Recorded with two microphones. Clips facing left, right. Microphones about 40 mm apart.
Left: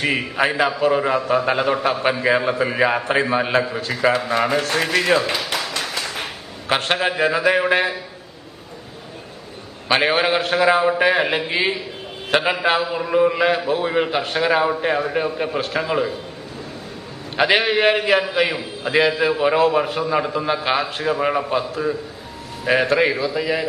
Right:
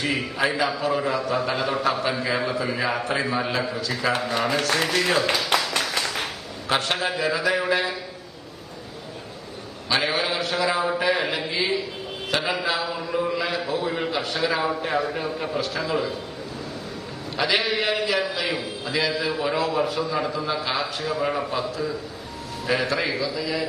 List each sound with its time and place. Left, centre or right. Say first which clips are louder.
0.0 s a man's voice: left 4 dB; left
5.8 s a sound: even; left
6.7 s a man's voice: left 4 dB; left
9.8 s a man's voice: left 6 dB; left
17.4 s a man's voice: left 6 dB; left